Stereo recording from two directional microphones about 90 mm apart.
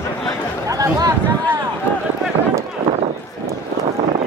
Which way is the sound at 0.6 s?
45° right (ahead or behind).